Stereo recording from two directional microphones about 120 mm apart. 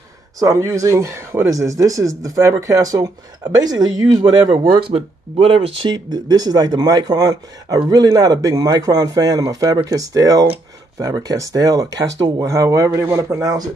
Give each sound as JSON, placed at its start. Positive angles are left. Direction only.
{"t": 0.4, "sound": "speech", "side_deg": -25}
{"t": 4.7, "sound": "speech", "side_deg": -50}